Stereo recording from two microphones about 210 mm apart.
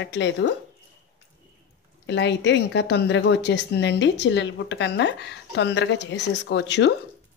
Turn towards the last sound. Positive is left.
turn(degrees=55)  # may be behind; listen again after turning